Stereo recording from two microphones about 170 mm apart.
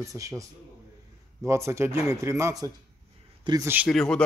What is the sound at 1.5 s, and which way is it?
Speech, 15° right (ahead or behind).